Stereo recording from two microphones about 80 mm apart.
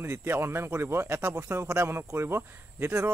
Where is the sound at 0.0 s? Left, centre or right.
Right.